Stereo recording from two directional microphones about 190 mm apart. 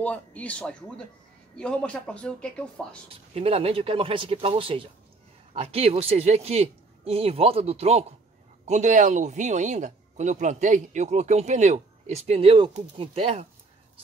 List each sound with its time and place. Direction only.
0.0 s speech: 5° left (ahead or behind)
3.1 s speech: 30° right (ahead or behind)